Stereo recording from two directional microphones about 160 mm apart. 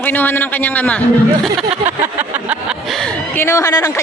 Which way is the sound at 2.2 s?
5° right (ahead or behind).